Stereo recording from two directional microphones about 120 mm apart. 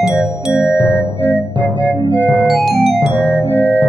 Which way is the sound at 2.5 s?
Centre (ahead or behind).